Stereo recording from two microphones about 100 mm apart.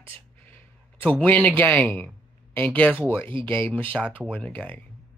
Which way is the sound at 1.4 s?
15° left (ahead or behind).